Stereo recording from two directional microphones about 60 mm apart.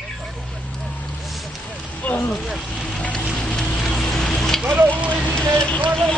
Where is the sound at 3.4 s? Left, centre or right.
Centre.